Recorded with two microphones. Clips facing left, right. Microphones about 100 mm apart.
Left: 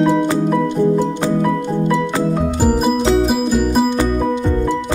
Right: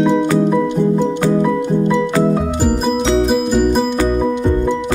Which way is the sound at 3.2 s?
Centre (ahead or behind).